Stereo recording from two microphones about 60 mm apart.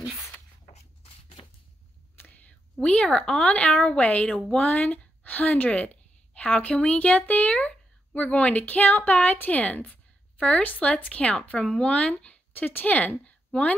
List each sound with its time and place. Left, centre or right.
2.2 s whispering: left
2.8 s a woman's voice: centre
6.3 s a sound: centre
6.6 s a woman's voice: left